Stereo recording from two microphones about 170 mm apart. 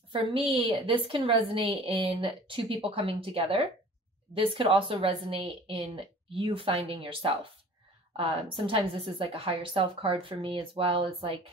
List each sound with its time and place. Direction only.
0.1 s a woman's voice: 35° right (ahead or behind)